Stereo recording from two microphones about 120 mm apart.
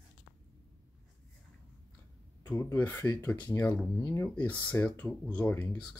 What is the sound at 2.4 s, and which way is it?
Speech, 20° left (ahead or behind).